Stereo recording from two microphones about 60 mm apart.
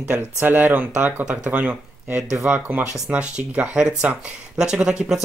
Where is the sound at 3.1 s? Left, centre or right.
Right.